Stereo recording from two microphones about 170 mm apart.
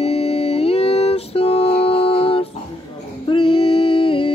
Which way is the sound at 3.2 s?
30° left (ahead or behind).